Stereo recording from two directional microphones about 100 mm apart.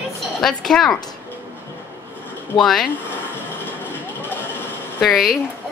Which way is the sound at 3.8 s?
20° left (ahead or behind).